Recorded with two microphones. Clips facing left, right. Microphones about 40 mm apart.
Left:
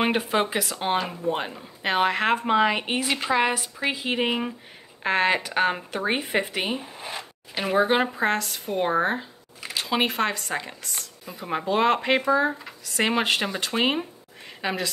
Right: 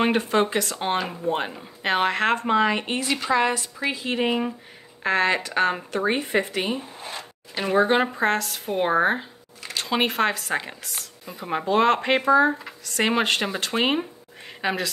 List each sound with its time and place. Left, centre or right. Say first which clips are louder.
0.0 s speech: right 2 dB; centre
9.6 s speech: right 1 dB; centre